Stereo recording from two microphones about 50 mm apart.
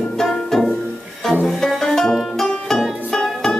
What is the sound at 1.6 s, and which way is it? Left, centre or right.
Music, centre.